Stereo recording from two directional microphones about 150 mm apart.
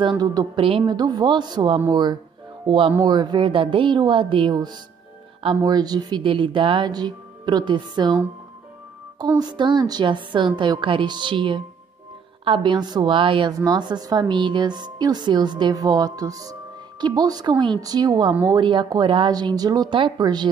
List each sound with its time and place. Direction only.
0.0 s a woman's voice: 30° right (ahead or behind)
9.4 s a woman's voice: 30° right (ahead or behind)